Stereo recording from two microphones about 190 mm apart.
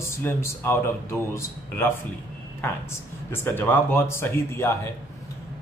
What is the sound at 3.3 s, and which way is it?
A man's voice, 10° left (ahead or behind).